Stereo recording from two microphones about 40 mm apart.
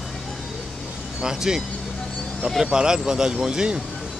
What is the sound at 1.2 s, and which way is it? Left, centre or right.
Speech, centre.